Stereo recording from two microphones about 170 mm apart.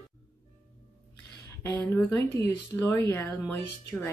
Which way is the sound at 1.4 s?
15° left (ahead or behind).